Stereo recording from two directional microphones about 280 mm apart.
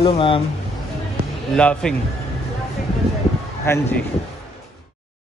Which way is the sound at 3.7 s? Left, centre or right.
Centre.